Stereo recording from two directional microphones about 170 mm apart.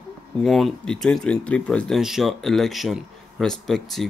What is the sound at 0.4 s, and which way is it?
Speech, centre (ahead or behind).